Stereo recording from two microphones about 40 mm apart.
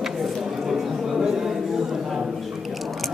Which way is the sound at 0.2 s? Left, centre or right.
Centre.